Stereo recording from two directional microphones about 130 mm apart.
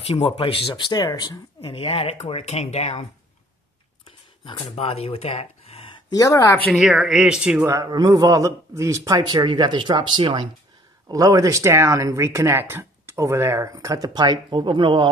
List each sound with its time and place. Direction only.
0.0 s speech: 50° left (ahead or behind)
4.6 s speech: 50° left (ahead or behind); by 6.7 s 20° left (ahead or behind)
6.7 s speech: 5° right (ahead or behind)
7.6 s a man's voice: 25° right (ahead or behind)